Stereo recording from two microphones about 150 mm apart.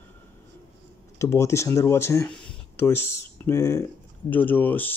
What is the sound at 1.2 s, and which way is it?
Speech, 20° left (ahead or behind).